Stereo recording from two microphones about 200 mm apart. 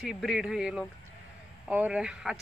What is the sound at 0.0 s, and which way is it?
Speech, centre (ahead or behind).